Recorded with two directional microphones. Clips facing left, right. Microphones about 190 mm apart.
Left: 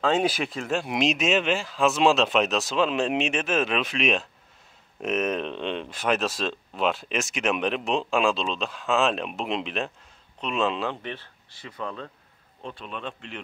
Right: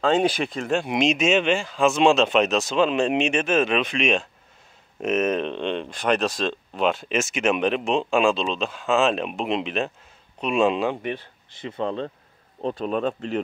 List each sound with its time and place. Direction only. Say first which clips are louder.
0.0 s speech: right 3 dB; 5° left (ahead or behind)
10.4 s speech: right 6 dB; 10° right (ahead or behind); by 12.1 s 30° right (ahead or behind)
12.6 s speech: right 11 dB; 40° right (ahead or behind)